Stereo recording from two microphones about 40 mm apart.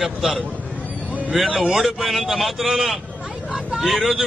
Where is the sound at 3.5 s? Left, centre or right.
Centre.